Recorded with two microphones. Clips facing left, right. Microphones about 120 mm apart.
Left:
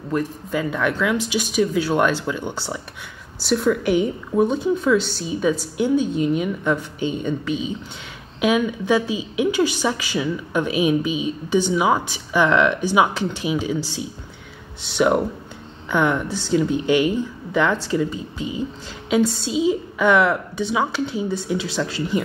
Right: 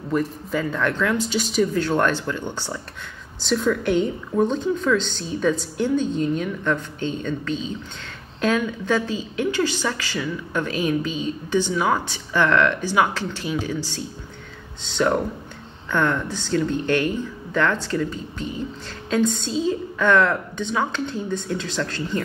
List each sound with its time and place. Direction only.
0.1 s a woman's voice: 5° left (ahead or behind)